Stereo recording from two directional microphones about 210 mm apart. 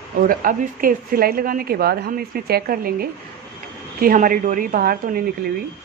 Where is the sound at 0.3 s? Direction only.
40° right (ahead or behind).